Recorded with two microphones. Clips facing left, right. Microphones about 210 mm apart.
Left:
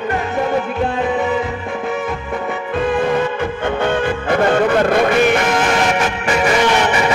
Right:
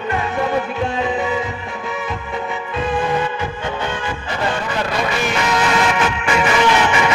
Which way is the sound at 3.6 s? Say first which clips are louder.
Left 7 dB; 55° left (ahead or behind).